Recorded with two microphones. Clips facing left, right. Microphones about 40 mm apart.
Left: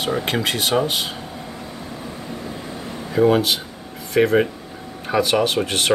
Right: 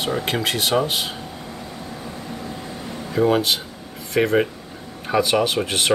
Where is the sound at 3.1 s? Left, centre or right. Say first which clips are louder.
Left 2 dB; centre.